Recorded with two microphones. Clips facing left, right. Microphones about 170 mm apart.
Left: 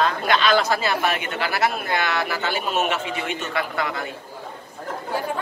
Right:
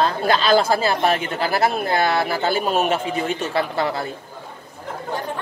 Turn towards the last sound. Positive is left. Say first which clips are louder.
# right 4 dB
turn(degrees=-30)  # may be behind; listen again after turning